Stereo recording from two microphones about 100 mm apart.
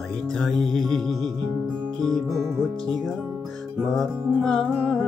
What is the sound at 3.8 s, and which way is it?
Music, 5° left (ahead or behind).